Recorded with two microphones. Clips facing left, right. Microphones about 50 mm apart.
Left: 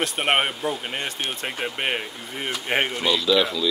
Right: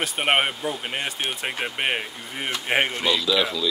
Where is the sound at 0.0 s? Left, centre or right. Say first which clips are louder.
Even; centre.